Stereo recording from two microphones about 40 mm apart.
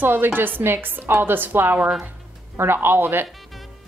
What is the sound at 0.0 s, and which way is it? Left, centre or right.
A woman's voice, right.